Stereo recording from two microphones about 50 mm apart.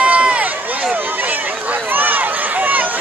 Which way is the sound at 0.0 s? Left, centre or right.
Right.